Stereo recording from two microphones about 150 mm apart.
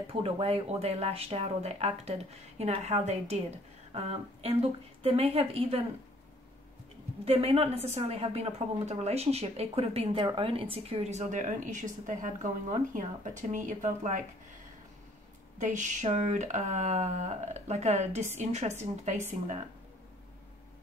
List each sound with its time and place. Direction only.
0.0 s a woman's voice: 40° right (ahead or behind)
7.2 s a woman's voice: 40° right (ahead or behind); by 14.2 s 55° right (ahead or behind)
15.6 s a woman's voice: 55° right (ahead or behind)